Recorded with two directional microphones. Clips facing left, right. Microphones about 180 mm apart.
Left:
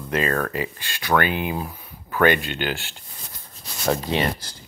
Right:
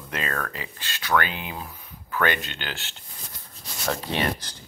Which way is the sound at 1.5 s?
35° left (ahead or behind).